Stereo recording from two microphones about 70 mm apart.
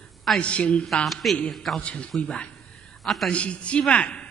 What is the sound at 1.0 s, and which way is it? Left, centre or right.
Speech, centre.